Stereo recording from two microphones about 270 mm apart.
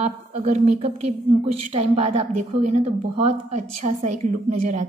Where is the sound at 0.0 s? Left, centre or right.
Right.